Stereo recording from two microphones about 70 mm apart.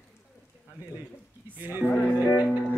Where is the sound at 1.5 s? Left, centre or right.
Right.